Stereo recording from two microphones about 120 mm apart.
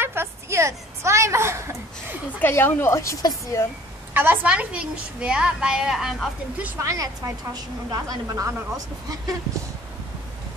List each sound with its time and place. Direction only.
0.0 s a woman's voice: 20° right (ahead or behind)
2.3 s a woman's voice: 15° left (ahead or behind)
4.1 s a woman's voice: 15° right (ahead or behind)
6.8 s a woman's voice: 25° right (ahead or behind)